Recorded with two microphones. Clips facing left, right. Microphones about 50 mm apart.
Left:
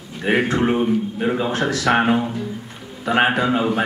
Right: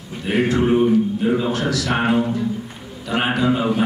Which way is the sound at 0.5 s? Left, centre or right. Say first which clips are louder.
Right 2 dB; left.